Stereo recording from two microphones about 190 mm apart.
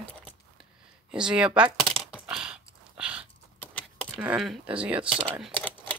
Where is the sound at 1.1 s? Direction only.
5° right (ahead or behind).